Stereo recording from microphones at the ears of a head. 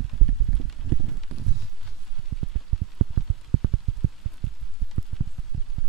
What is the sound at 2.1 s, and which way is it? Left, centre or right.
Rain, right.